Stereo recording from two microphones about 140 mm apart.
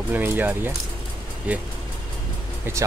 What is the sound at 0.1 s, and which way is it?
Speech, 15° right (ahead or behind).